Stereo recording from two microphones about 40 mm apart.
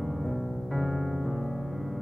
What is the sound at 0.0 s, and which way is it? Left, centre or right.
Music, centre.